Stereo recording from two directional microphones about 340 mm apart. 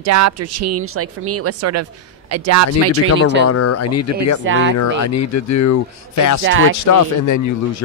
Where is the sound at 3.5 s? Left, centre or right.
Left.